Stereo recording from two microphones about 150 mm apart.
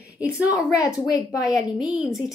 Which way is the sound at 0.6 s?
20° left (ahead or behind).